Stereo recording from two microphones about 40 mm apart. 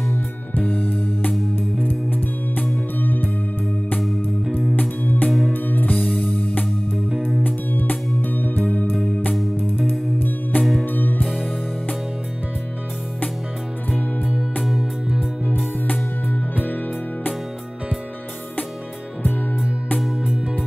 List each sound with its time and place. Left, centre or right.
0.6 s music: left
4.7 s music: left
6.1 s music: left
7.1 s music: centre
7.4 s music: left
10.1 s music: left
10.6 s music: centre
10.9 s music: left
14.6 s music: centre
15.4 s music: left